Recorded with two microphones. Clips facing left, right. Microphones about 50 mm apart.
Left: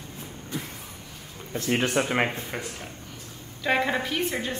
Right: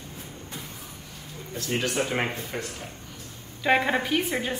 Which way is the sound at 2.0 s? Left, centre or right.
Centre.